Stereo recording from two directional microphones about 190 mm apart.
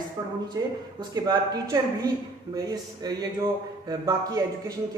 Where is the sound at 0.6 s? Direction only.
20° right (ahead or behind).